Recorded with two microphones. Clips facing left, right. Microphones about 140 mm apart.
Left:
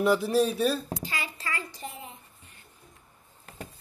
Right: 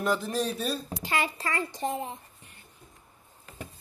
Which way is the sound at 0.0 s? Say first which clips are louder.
Left 5 dB; 5° left (ahead or behind).